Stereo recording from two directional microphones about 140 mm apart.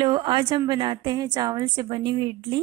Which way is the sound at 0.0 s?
35° right (ahead or behind).